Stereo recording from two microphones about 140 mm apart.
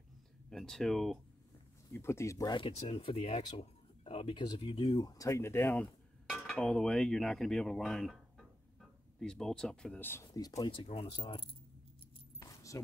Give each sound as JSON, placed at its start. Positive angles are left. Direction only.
{"t": 0.5, "sound": "speech", "side_deg": 5}
{"t": 2.0, "sound": "speech", "side_deg": 20}
{"t": 2.7, "sound": "speech", "side_deg": 40}
{"t": 6.2, "sound": "speech", "side_deg": 0}
{"t": 10.6, "sound": "speech", "side_deg": 40}
{"t": 12.4, "sound": "keys jangling", "side_deg": 20}